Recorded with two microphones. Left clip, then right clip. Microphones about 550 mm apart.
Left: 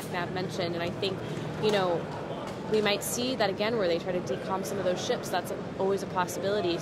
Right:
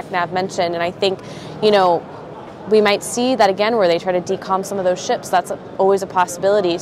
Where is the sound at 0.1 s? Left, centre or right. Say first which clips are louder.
Right 14 dB; right.